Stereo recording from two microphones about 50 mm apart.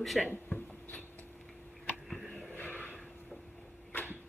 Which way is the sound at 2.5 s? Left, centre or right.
Left.